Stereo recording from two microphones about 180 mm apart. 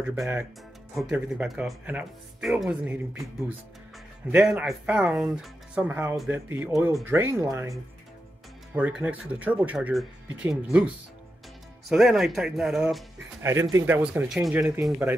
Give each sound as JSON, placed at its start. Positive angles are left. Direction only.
{"t": 0.0, "sound": "speech", "side_deg": -10}
{"t": 11.9, "sound": "speech", "side_deg": 0}
{"t": 13.4, "sound": "speech", "side_deg": -15}